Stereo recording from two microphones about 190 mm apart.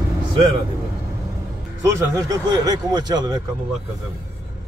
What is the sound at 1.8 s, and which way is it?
Speech, 15° right (ahead or behind).